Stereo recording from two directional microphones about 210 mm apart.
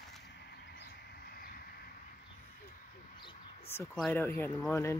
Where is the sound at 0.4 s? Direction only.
50° left (ahead or behind).